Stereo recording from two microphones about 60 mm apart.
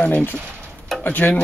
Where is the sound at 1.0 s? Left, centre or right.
Left.